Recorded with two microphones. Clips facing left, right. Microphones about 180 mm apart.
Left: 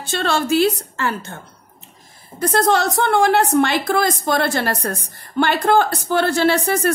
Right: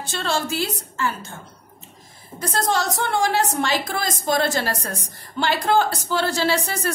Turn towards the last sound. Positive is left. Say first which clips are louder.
# left 6 dB
turn(degrees=55)  # may be behind; listen again after turning